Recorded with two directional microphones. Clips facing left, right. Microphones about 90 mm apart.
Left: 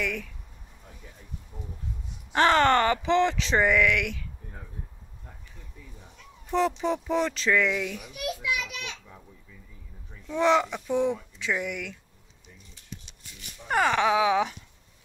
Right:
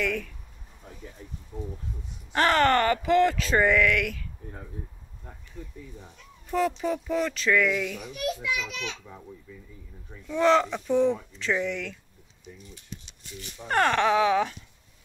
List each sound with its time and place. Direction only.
0.0 s speech: 15° left (ahead or behind)
1.5 s speech: 10° left (ahead or behind)
2.3 s speech: 25° left (ahead or behind)
6.5 s speech: 25° left (ahead or behind)
8.1 s speech: 10° left (ahead or behind)
10.2 s speech: 20° left (ahead or behind)
13.7 s speech: 5° left (ahead or behind)